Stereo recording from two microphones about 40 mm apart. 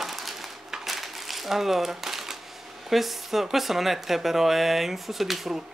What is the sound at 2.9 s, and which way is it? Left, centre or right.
Speech, centre.